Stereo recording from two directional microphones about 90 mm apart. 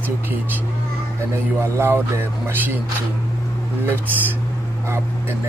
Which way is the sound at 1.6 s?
30° right (ahead or behind).